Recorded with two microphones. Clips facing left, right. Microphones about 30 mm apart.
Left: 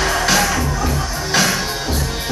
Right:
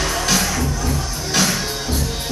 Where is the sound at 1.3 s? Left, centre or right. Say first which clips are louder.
Left 2 dB; centre.